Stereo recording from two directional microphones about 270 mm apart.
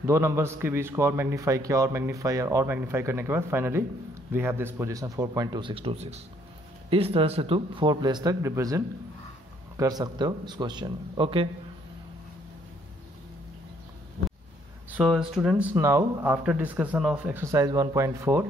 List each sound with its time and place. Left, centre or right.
0.0 s a man's voice: centre
14.9 s a man's voice: centre